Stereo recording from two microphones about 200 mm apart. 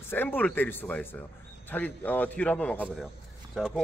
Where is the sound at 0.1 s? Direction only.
10° left (ahead or behind).